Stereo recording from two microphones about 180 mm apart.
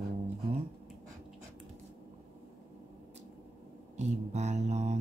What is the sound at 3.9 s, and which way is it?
Speech, 40° right (ahead or behind).